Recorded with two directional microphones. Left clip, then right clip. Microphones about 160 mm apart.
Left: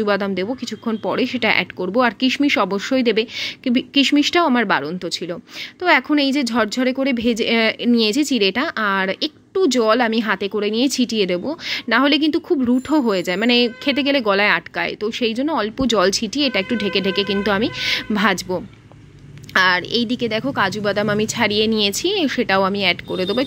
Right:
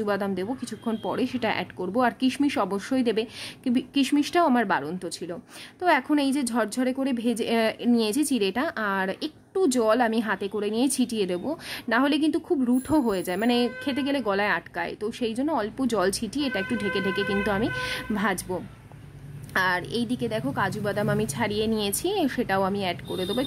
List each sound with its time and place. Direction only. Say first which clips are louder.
0.0 s a woman's voice: left 8 dB; 10° left (ahead or behind)